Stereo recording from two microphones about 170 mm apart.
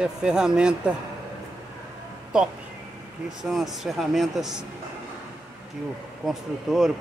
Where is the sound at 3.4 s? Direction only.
Centre (ahead or behind).